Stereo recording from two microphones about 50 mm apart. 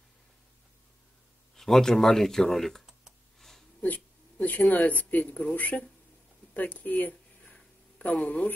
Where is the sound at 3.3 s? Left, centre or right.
Centre.